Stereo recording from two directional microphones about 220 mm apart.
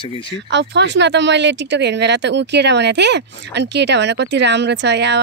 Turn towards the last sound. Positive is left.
turn(degrees=-50)  # may be behind; listen again after turning